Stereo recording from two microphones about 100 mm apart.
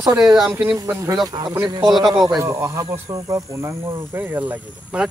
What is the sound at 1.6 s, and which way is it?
Speech, 45° right (ahead or behind).